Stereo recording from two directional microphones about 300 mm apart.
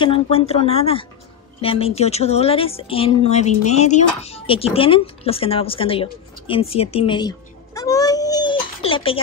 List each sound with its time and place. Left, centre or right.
0.0 s a child's voice: centre